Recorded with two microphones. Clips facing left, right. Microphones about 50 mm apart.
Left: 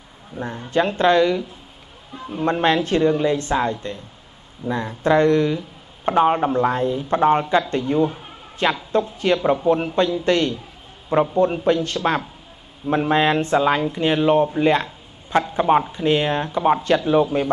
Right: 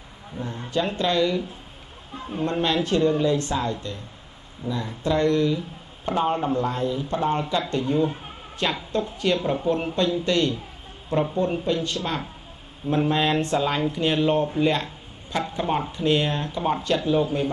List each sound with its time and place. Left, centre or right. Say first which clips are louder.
0.3 s speech: left 4 dB; right
0.7 s speech: left 7 dB; left
13.1 s speech: left 8 dB; left